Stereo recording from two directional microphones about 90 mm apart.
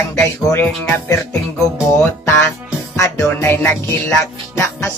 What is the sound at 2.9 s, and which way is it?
Music, 30° left (ahead or behind).